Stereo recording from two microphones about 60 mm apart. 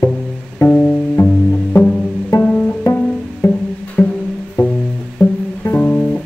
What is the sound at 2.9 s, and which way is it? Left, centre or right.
Music, left.